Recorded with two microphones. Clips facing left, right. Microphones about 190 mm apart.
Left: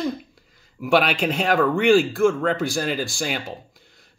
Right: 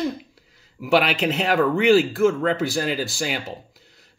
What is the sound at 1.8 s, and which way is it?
Speech, 50° left (ahead or behind).